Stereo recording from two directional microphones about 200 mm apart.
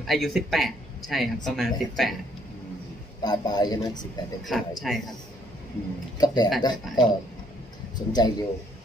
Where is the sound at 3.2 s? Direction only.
20° left (ahead or behind).